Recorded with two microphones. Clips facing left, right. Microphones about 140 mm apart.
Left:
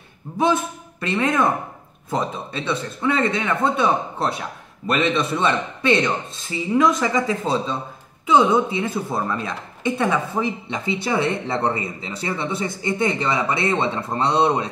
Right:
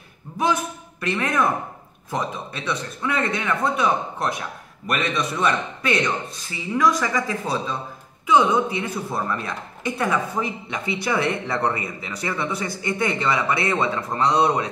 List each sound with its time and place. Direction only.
1.0 s speech: 25° left (ahead or behind)